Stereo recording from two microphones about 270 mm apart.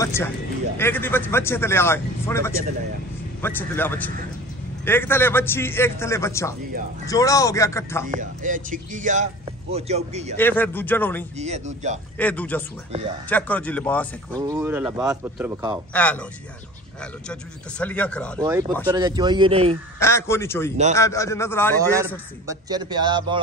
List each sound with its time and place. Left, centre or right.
0.0 s a man's voice: centre
8.1 s speech: right
10.3 s a man's voice: centre
11.3 s speech: right
12.2 s speech: centre
14.5 s speech: centre
15.7 s speech: centre
18.4 s speech: centre
20.0 s a man's voice: centre
22.5 s speech: centre